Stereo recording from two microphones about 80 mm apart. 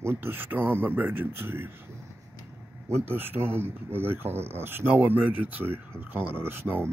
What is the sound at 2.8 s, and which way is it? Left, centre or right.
Speech, right.